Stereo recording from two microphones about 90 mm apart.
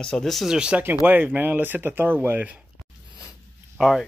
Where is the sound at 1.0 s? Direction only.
20° right (ahead or behind).